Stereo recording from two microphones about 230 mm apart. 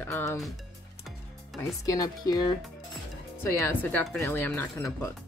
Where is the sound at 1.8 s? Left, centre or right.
Centre.